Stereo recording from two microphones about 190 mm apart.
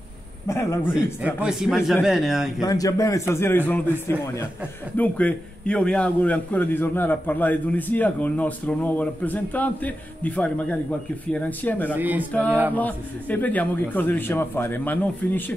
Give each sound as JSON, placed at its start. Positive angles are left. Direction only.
{"t": 0.5, "sound": "a man's voice", "side_deg": 15}
{"t": 1.2, "sound": "speech", "side_deg": -5}
{"t": 2.6, "sound": "a man's voice", "side_deg": 20}
{"t": 4.9, "sound": "a man's voice", "side_deg": 10}
{"t": 11.9, "sound": "speech", "side_deg": -10}
{"t": 12.3, "sound": "a man's voice", "side_deg": 10}